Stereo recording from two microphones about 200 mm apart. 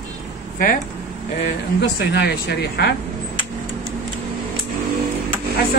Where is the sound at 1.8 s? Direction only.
55° left (ahead or behind).